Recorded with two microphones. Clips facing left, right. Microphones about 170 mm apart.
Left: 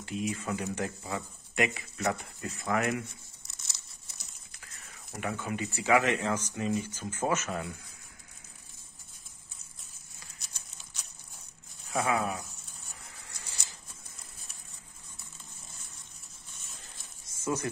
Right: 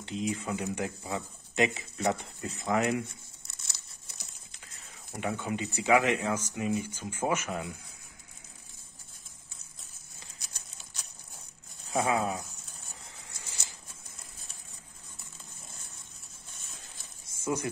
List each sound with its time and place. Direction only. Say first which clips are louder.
0.0 s speech: right 1 dB; 25° right (ahead or behind)
5.1 s speech: right 2 dB; 20° right (ahead or behind)
11.9 s speech: right 1 dB; 20° right (ahead or behind)
13.3 s patter: even; 20° right (ahead or behind)
17.2 s a sound: even; 10° right (ahead or behind)